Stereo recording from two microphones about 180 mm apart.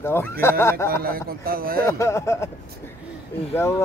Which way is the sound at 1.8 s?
15° left (ahead or behind).